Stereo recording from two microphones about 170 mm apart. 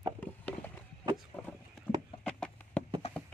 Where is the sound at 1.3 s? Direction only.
10° left (ahead or behind).